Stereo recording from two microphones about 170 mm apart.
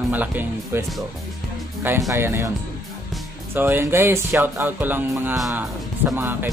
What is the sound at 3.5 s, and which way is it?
Speech, 10° right (ahead or behind).